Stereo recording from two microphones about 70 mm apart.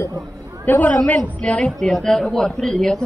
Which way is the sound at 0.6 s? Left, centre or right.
Left.